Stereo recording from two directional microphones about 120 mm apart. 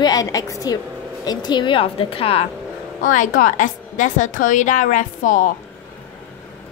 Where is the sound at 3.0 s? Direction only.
90° left.